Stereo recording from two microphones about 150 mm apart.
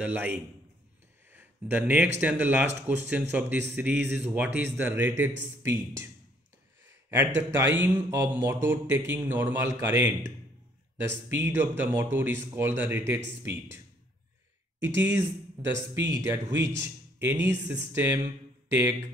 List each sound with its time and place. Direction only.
0.0 s speech: 10° right (ahead or behind)
1.3 s a sound: 10° right (ahead or behind)
2.1 s speech: 10° right (ahead or behind)
7.1 s speech: 15° right (ahead or behind)
14.8 s speech: 15° right (ahead or behind)